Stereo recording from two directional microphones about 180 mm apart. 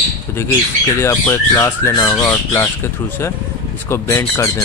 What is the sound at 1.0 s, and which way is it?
Speech, 15° left (ahead or behind).